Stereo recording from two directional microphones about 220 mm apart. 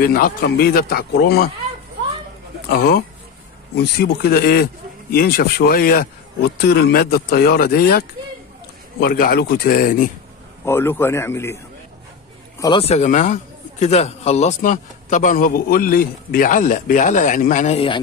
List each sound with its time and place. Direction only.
0.0 s speech: 40° left (ahead or behind)
2.7 s speech: 45° left (ahead or behind)
9.0 s a man's voice: 40° left (ahead or behind)
10.6 s a man's voice: 10° left (ahead or behind)
12.8 s a man's voice: 30° left (ahead or behind)